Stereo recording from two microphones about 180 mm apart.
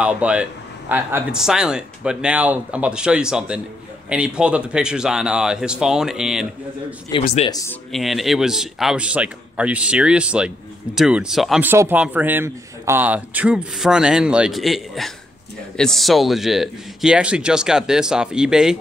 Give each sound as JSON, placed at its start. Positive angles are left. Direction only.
{"t": 0.0, "sound": "speech", "side_deg": -5}
{"t": 7.1, "sound": "speech", "side_deg": 25}
{"t": 7.9, "sound": "speech", "side_deg": 0}